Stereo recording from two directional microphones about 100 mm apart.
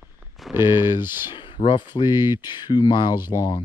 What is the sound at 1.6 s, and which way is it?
Speech, 50° left (ahead or behind).